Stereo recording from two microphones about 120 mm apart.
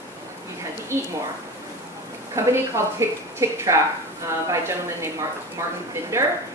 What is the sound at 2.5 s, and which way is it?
A woman's voice, 25° right (ahead or behind).